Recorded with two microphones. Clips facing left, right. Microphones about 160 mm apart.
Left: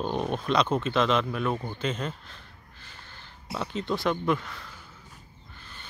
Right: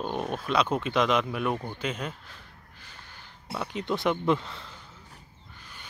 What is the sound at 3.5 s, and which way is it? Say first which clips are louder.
Speech: even; 15° right (ahead or behind).